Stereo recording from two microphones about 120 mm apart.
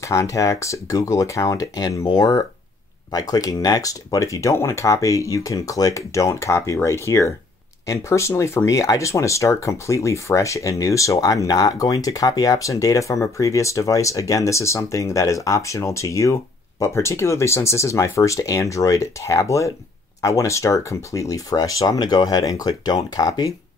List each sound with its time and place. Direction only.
0.0 s speech: 25° left (ahead or behind)